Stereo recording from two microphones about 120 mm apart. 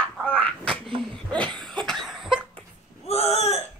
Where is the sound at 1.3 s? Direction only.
5° left (ahead or behind).